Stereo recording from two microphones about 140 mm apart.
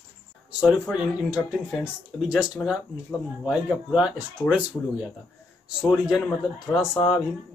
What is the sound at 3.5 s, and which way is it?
Speech, 5° right (ahead or behind).